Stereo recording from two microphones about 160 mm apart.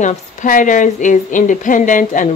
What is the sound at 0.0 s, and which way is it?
A woman's voice, 50° left (ahead or behind).